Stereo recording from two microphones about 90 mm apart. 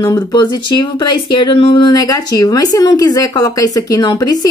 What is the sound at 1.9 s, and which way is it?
Speech, 45° left (ahead or behind).